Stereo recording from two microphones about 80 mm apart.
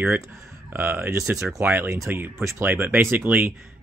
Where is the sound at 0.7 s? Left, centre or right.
Right.